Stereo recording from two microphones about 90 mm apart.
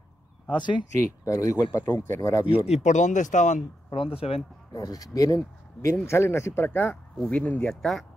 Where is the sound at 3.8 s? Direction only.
90° left.